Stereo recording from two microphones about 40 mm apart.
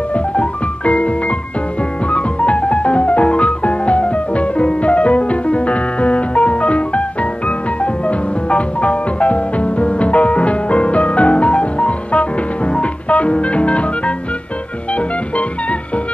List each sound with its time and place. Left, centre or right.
0.1 s music: left